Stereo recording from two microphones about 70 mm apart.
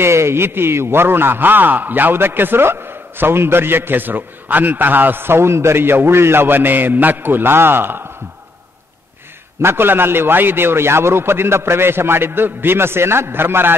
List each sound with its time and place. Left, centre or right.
0.0 s a man's voice: right
9.6 s a man's voice: right